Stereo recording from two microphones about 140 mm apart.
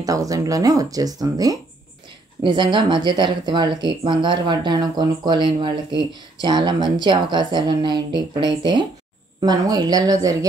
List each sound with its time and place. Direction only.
0.0 s speech: 25° right (ahead or behind)